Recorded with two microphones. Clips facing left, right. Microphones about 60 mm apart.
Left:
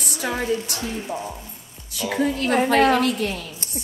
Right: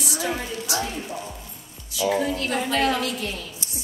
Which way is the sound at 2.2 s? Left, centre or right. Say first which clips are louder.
Left 5 dB; left.